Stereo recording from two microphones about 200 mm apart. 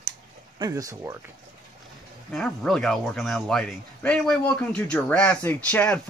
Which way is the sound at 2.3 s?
5° left (ahead or behind).